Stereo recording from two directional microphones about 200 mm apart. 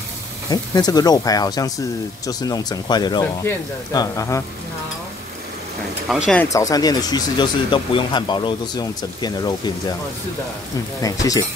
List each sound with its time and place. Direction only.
0.5 s speech: 20° left (ahead or behind)
6.0 s speech: centre (ahead or behind)
6.4 s speech: 15° left (ahead or behind)
11.0 s speech: 15° left (ahead or behind)